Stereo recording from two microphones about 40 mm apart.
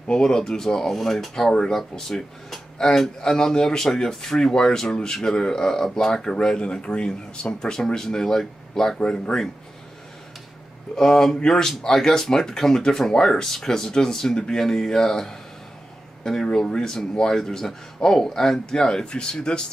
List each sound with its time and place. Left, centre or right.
0.0 s speech: centre
6.4 s speech: left
11.0 s speech: centre
16.4 s speech: centre